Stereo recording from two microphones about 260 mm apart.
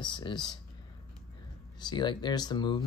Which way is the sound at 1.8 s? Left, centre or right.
Centre.